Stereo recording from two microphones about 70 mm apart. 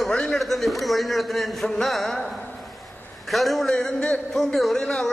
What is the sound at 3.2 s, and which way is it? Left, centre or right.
Speech, centre.